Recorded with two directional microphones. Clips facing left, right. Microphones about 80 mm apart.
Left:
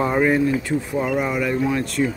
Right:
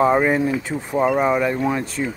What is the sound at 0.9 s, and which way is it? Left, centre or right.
Speech, right.